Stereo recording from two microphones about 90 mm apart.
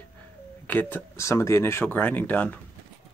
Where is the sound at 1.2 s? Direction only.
30° left (ahead or behind).